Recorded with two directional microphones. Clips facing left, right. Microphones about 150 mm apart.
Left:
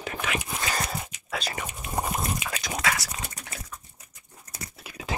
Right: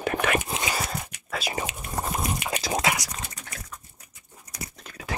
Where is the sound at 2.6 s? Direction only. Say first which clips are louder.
Right 3 dB; 30° right (ahead or behind).